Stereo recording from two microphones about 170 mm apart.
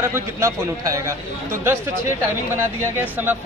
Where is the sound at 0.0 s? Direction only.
15° right (ahead or behind).